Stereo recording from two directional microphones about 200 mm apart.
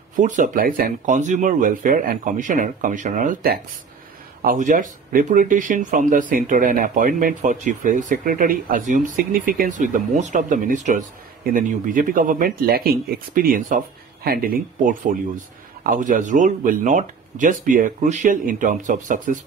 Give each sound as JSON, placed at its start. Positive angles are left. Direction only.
{"t": 0.1, "sound": "speech", "side_deg": -40}